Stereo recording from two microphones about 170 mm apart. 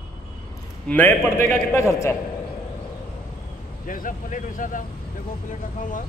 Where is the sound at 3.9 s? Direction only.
55° left (ahead or behind).